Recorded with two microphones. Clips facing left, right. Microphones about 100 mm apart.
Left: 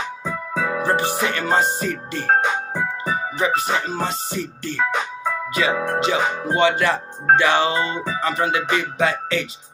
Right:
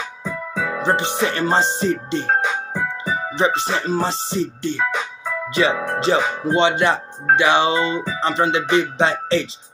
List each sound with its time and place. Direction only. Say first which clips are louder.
0.7 s speech: right 2 dB; 25° right (ahead or behind)
3.3 s speech: right 2 dB; 25° right (ahead or behind)